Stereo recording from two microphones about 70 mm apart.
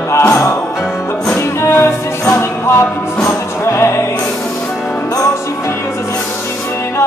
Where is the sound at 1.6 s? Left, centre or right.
Left.